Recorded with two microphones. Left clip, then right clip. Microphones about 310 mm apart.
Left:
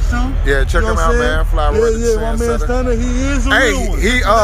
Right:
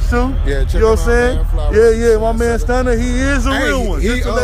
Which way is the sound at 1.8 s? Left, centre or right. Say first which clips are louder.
Right 6 dB; right.